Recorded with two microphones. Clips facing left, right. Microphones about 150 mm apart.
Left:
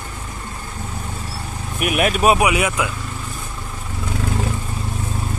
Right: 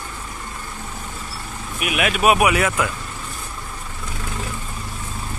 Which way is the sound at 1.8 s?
40° left (ahead or behind).